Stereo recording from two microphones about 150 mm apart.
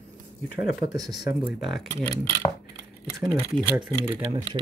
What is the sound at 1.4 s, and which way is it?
Speech, centre (ahead or behind).